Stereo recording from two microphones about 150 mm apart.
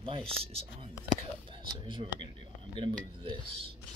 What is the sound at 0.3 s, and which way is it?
Speech, 40° right (ahead or behind).